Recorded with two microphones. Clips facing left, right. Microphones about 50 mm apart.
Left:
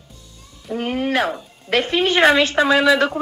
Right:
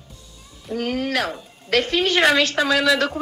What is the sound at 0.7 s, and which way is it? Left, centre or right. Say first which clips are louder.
A woman's voice: left 2 dB; centre.